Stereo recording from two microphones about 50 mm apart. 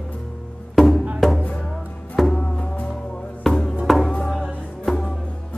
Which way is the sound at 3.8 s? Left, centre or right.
Centre.